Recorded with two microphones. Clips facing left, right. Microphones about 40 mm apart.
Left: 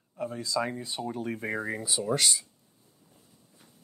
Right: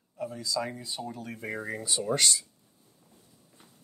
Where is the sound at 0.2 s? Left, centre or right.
Left.